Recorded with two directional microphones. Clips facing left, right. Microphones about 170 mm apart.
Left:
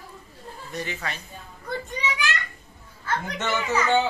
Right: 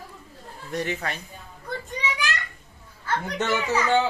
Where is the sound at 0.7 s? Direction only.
65° right (ahead or behind).